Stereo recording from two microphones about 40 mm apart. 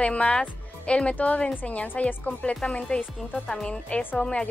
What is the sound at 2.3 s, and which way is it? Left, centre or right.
Speech, left.